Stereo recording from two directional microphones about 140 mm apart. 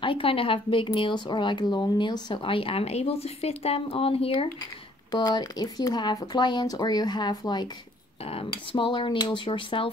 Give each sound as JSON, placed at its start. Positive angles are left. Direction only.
{"t": 0.0, "sound": "speech", "side_deg": 40}
{"t": 5.1, "sound": "speech", "side_deg": 30}